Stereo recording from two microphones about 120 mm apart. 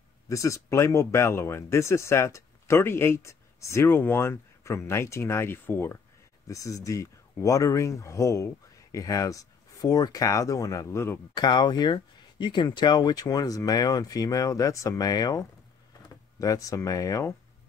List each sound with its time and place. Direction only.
0.3 s speech: 25° left (ahead or behind)
11.3 s speech: 35° left (ahead or behind)